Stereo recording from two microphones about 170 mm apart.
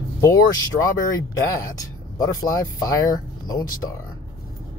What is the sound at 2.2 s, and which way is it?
Speech, 20° left (ahead or behind).